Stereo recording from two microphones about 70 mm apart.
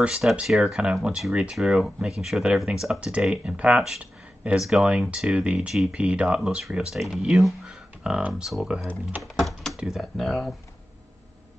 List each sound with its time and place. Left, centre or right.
0.5 s speech: centre
4.0 s a sound: centre
4.6 s speech: centre
7.6 s a sound: centre
8.3 s speech: centre
9.2 s typing: centre
9.8 s speech: centre